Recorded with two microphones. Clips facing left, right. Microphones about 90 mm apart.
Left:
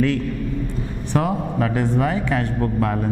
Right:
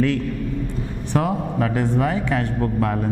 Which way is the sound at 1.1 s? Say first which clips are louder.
Even; 15° left (ahead or behind).